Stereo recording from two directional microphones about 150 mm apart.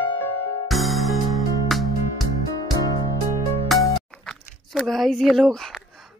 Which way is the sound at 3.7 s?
Centre (ahead or behind).